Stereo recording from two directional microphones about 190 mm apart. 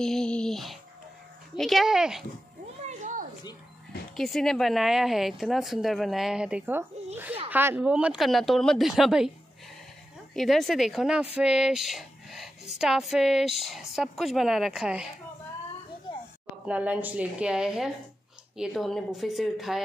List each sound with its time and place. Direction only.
0.0 s a sound: 5° left (ahead or behind)
1.6 s speech: centre (ahead or behind)
2.8 s a sound: 45° right (ahead or behind)
4.2 s speech: centre (ahead or behind)
10.3 s speech: centre (ahead or behind)
16.6 s speech: 5° right (ahead or behind)